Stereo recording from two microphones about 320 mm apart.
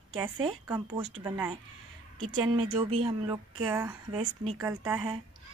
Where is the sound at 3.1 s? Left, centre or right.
Centre.